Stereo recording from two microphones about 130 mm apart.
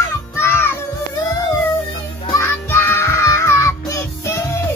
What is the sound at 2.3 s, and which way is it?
Music, 20° left (ahead or behind).